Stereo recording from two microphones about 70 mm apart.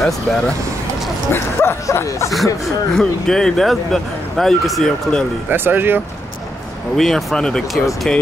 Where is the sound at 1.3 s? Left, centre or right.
Left.